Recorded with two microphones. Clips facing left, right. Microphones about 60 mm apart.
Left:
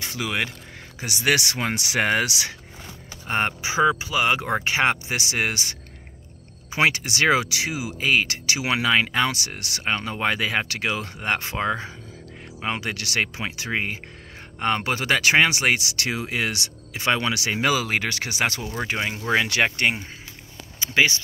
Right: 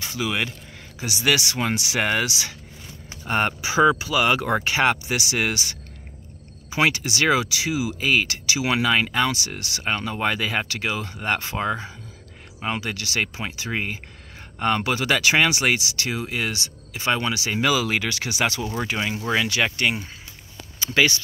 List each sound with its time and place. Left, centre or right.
0.0 s speech: left
3.3 s speech: centre
6.7 s speech: left
8.5 s speech: left
10.7 s speech: left
11.2 s speech: left
14.6 s speech: left
16.0 s speech: left
17.5 s speech: left
20.8 s speech: left